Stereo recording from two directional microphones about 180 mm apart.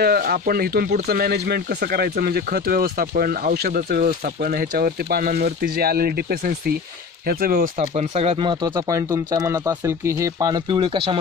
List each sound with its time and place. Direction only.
0.0 s speech: 60° right (ahead or behind)
7.8 s speech: 40° right (ahead or behind)